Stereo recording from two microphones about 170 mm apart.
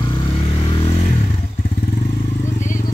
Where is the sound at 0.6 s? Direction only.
30° left (ahead or behind).